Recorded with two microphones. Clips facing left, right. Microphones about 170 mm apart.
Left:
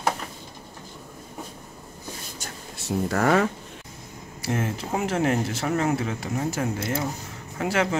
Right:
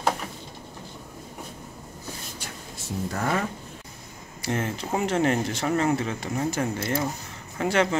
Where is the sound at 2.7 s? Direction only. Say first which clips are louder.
Left 6 dB; 80° left.